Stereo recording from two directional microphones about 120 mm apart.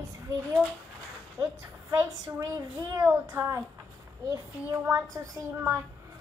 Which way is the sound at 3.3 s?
25° right (ahead or behind).